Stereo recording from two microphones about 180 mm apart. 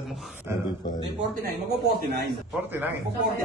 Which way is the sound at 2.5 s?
10° right (ahead or behind).